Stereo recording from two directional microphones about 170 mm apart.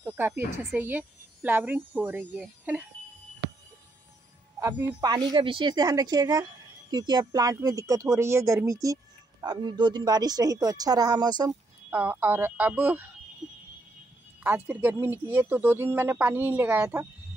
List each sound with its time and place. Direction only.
0.0 s a sound: 10° right (ahead or behind)
0.7 s speech: 10° right (ahead or behind)
4.6 s speech: 20° right (ahead or behind)
11.9 s speech: 10° right (ahead or behind)
14.4 s speech: 10° right (ahead or behind)